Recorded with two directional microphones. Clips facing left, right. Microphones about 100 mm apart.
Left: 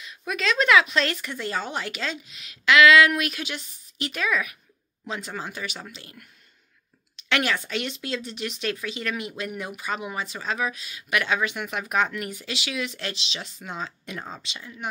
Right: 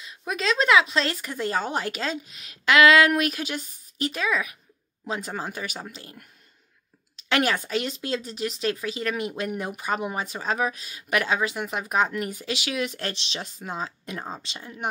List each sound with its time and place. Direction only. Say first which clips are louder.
0.0 s speech: even; 30° right (ahead or behind)
4.1 s speech: left 2 dB; 30° right (ahead or behind)
7.2 s speech: right 2 dB; 35° right (ahead or behind)